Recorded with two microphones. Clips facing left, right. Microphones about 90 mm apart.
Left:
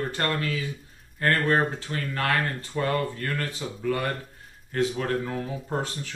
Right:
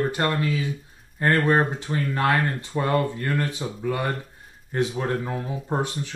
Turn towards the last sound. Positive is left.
turn(degrees=-20)  # may be behind; listen again after turning